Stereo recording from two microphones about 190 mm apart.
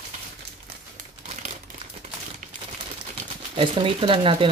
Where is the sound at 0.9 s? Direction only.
40° right (ahead or behind).